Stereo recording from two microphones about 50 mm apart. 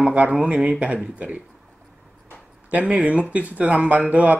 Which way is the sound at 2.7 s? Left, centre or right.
Right.